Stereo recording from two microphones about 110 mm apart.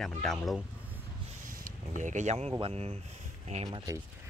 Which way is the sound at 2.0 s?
90° right.